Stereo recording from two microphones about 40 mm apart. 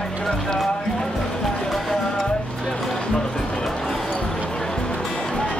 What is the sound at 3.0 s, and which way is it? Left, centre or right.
Music, centre.